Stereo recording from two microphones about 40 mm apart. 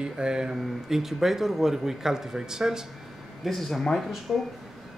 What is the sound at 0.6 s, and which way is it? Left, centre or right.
Speech, centre.